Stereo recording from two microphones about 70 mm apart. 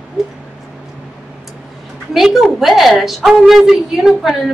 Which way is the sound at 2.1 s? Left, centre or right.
Centre.